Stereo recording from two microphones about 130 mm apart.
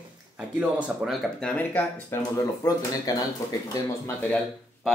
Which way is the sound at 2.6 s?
30° left (ahead or behind).